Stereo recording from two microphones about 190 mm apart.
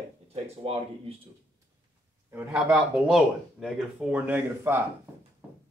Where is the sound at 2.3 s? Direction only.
10° right (ahead or behind).